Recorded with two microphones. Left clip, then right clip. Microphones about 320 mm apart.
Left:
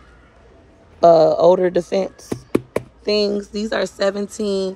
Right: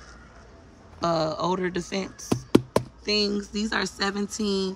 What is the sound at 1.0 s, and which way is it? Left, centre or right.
Speech, centre.